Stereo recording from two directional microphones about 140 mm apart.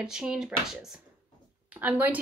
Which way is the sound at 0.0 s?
5° right (ahead or behind).